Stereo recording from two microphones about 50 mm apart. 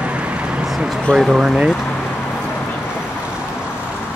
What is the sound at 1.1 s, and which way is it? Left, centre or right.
Speech, centre.